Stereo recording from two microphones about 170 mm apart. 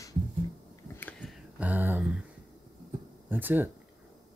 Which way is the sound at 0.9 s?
10° left (ahead or behind).